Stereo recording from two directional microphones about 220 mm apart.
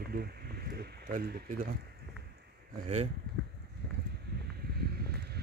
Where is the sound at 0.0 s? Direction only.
45° right (ahead or behind).